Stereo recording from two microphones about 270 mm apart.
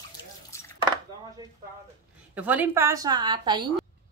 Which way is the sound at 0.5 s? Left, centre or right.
Centre.